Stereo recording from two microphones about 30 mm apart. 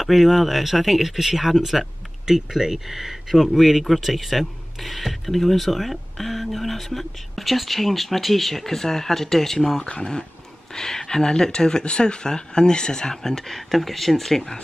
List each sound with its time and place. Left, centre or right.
0.0 s speech: centre
2.2 s speech: centre